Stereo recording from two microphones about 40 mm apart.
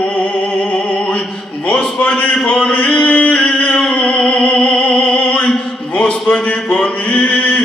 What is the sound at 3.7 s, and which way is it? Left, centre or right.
Music, left.